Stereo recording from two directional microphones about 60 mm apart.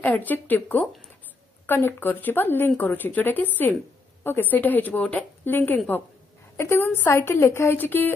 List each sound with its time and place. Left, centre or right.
0.0 s speech: left
6.5 s a woman's voice: left
7.7 s speech: left